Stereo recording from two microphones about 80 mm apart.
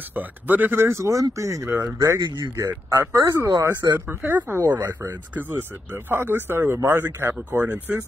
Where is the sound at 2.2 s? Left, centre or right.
Right.